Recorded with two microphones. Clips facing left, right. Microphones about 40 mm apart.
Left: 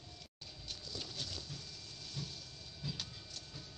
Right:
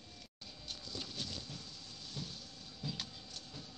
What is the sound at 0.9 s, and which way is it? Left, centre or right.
Clip-clop, right.